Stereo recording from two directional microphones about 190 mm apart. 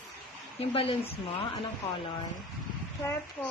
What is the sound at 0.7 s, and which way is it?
Speech, 30° left (ahead or behind).